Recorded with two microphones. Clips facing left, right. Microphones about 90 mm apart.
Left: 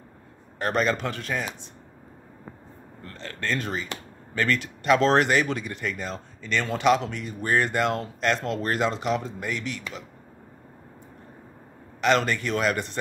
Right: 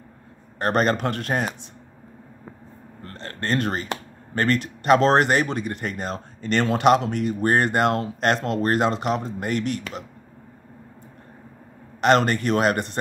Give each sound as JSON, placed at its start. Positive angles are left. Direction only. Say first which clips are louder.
{"t": 0.6, "sound": "speech", "louder": "right 3 dB", "side_deg": -50}
{"t": 3.0, "sound": "speech", "louder": "right 2 dB", "side_deg": -50}
{"t": 3.5, "sound": "speech", "louder": "right 5 dB", "side_deg": -60}
{"t": 12.0, "sound": "speech", "louder": "right 4 dB", "side_deg": -50}